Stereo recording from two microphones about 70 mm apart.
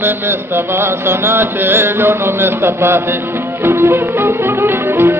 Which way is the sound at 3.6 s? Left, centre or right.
Right.